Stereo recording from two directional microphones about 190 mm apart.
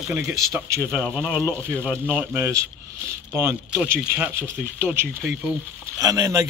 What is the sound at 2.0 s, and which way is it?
Speech, 10° right (ahead or behind).